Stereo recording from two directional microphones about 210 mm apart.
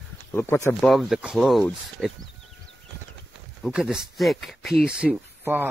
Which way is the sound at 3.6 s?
Centre (ahead or behind).